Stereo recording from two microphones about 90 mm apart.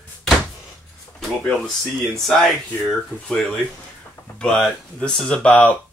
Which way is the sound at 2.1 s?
5° left (ahead or behind).